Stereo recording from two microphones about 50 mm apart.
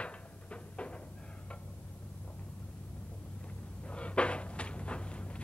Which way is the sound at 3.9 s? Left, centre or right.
Left.